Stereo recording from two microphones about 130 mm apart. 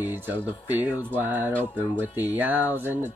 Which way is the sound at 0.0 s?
15° right (ahead or behind).